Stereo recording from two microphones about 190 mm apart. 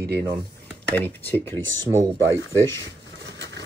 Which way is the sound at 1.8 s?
15° right (ahead or behind).